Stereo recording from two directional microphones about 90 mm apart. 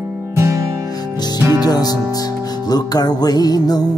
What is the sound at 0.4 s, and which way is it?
Music, 35° right (ahead or behind).